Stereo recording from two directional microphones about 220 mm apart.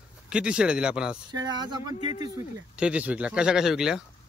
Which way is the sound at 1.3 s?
20° right (ahead or behind).